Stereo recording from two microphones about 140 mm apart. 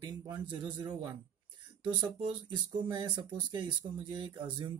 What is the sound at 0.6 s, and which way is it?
Speech, 30° right (ahead or behind).